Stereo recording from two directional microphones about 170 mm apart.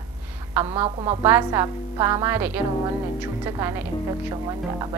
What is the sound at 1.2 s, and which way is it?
A woman's voice, 15° right (ahead or behind).